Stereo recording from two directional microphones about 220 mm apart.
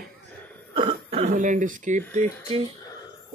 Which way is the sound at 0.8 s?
25° right (ahead or behind).